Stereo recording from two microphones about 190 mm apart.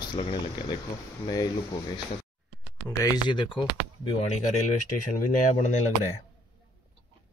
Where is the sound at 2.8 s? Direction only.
20° left (ahead or behind); by 5.8 s 40° left (ahead or behind).